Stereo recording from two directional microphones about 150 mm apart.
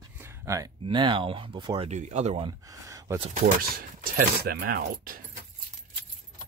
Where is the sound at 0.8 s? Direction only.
35° right (ahead or behind).